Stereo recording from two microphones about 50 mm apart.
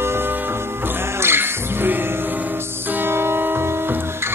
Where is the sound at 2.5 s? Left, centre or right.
Right.